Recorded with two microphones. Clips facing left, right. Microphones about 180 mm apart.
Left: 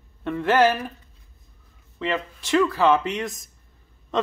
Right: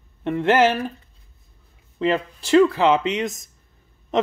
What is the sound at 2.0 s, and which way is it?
Speech, 30° right (ahead or behind).